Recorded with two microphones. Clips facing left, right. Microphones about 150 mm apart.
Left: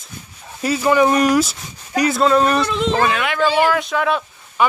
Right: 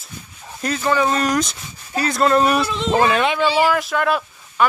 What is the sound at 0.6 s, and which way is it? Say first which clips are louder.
Speech: left 4 dB; 10° left (ahead or behind).